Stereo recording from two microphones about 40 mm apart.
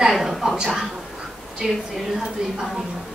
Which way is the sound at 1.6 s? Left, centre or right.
Centre.